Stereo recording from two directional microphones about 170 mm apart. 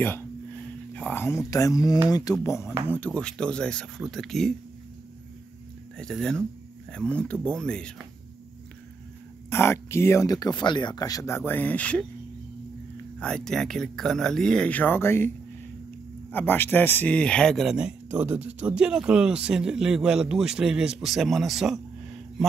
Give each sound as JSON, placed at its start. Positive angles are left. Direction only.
{"t": 0.0, "sound": "a sound", "side_deg": 10}
{"t": 1.5, "sound": "a man's voice", "side_deg": 20}
{"t": 5.9, "sound": "a man's voice", "side_deg": 5}
{"t": 9.5, "sound": "speech", "side_deg": 15}
{"t": 13.2, "sound": "a man's voice", "side_deg": 5}